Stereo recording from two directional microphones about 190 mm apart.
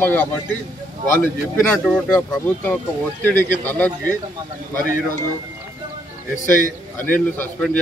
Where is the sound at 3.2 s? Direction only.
10° left (ahead or behind).